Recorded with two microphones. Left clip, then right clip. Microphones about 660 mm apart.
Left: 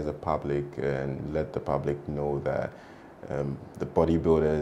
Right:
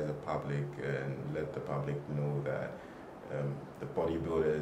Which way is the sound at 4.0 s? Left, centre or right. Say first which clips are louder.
Left 9 dB; left.